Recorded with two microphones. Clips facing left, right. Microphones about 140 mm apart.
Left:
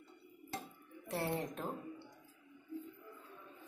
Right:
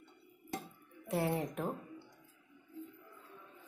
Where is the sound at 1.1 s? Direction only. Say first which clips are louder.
Right 4 dB; 10° right (ahead or behind).